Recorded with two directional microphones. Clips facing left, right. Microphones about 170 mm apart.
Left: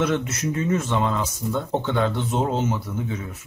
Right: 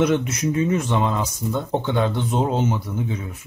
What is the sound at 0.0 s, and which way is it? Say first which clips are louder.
Speech: right 4 dB; 15° right (ahead or behind).